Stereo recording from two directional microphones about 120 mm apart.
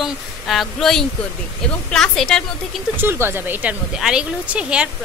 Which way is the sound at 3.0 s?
20° right (ahead or behind).